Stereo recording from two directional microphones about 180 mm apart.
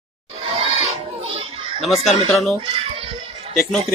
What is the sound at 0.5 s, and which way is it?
Crowd, 35° right (ahead or behind).